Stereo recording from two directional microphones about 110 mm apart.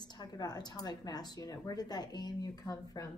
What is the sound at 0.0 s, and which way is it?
A woman's voice, 40° left (ahead or behind).